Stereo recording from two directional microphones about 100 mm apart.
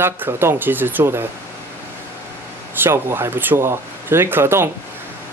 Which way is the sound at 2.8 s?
25° right (ahead or behind).